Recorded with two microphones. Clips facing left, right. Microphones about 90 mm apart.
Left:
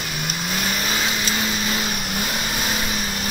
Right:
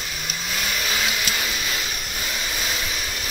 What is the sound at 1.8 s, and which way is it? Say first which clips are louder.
Vehicle: left 5 dB; 50° left (ahead or behind).